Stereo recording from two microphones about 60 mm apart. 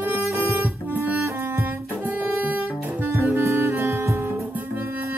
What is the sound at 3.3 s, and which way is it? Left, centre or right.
Music, right.